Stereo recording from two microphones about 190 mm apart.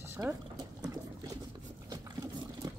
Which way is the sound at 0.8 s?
20° right (ahead or behind).